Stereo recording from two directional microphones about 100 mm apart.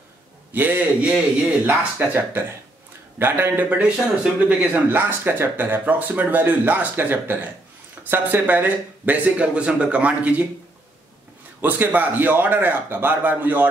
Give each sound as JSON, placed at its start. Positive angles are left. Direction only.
{"t": 0.5, "sound": "a man's voice", "side_deg": -15}
{"t": 11.6, "sound": "a man's voice", "side_deg": -15}